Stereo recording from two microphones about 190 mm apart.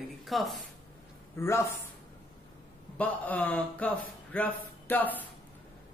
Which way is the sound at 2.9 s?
10° left (ahead or behind).